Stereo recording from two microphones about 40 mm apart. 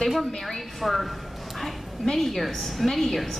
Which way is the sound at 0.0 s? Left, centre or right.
Centre.